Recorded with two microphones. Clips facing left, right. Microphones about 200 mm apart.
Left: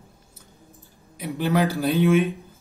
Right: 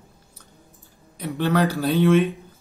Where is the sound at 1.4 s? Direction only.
15° left (ahead or behind).